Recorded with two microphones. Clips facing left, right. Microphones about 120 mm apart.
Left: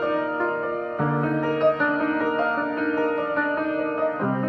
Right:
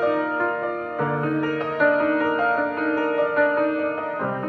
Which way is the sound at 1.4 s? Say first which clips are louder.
Even; 20° left (ahead or behind).